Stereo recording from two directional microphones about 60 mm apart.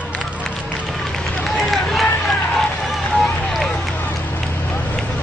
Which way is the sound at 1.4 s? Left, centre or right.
Centre.